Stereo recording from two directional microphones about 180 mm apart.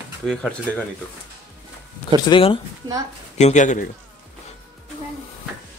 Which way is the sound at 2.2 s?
30° left (ahead or behind).